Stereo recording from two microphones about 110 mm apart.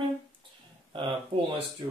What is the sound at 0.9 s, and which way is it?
Speech, 50° right (ahead or behind).